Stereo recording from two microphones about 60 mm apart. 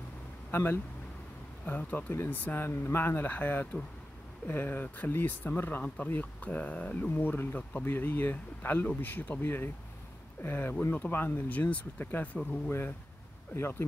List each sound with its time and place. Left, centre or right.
0.5 s speech: left
1.8 s speech: left